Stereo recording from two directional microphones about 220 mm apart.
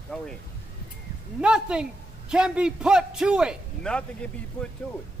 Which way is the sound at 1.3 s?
5° right (ahead or behind).